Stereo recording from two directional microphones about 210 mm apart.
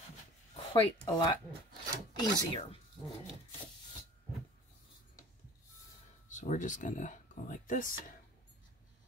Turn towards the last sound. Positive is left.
turn(degrees=40)  # may be behind; listen again after turning